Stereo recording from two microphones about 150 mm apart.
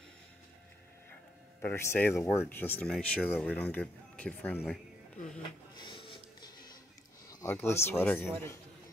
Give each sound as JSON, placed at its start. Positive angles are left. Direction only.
{"t": 1.6, "sound": "speech", "side_deg": 15}
{"t": 5.8, "sound": "music", "side_deg": 30}
{"t": 7.2, "sound": "a sound", "side_deg": 25}
{"t": 7.5, "sound": "speech", "side_deg": 15}